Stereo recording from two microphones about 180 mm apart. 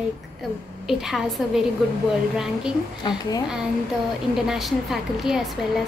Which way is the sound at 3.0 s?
20° left (ahead or behind).